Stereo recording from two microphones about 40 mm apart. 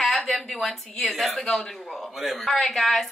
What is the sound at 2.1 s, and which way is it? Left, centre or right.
Speech, centre.